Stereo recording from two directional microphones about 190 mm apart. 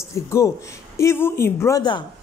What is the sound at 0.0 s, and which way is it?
A woman's voice, 15° left (ahead or behind).